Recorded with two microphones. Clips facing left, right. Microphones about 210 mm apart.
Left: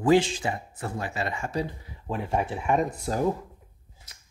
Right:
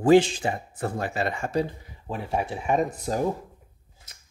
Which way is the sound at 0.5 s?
35° right (ahead or behind).